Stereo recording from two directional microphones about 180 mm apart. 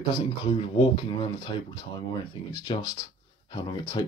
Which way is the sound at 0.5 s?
30° left (ahead or behind).